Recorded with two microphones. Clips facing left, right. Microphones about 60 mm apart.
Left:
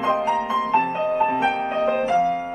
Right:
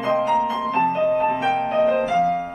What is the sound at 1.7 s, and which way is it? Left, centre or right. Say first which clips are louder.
Music: right 3 dB; centre.